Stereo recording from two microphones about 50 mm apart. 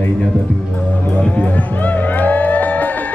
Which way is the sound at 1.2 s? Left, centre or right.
Left.